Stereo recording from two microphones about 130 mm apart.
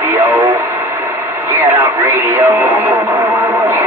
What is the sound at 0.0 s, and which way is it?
Radio, 20° right (ahead or behind).